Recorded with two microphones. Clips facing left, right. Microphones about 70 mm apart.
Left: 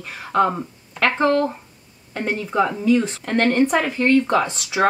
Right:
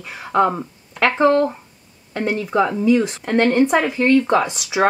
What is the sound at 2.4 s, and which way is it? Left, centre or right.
Speech, centre.